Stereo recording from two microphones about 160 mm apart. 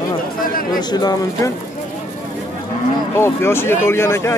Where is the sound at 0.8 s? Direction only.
25° left (ahead or behind).